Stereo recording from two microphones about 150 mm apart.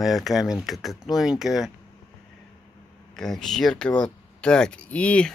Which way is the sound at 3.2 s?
5° left (ahead or behind).